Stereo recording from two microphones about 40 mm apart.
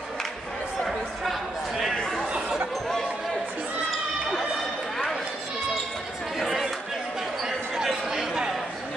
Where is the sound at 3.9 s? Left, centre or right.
Centre.